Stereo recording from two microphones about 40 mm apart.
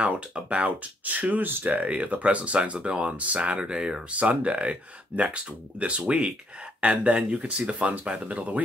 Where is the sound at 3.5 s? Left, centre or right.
Right.